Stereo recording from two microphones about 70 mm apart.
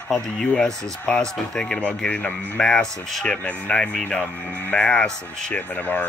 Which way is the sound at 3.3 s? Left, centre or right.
Centre.